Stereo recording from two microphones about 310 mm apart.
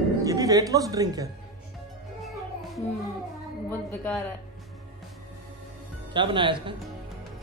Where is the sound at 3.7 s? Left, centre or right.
Centre.